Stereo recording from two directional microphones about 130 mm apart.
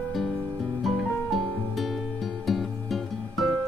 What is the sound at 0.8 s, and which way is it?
Music, centre (ahead or behind).